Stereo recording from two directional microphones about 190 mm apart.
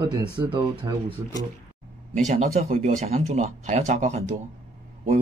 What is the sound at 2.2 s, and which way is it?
Speech, 40° right (ahead or behind).